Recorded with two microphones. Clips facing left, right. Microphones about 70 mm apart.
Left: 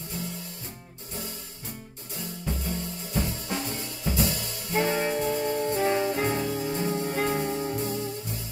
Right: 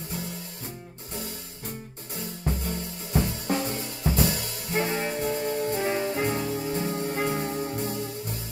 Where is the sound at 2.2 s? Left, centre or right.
Right.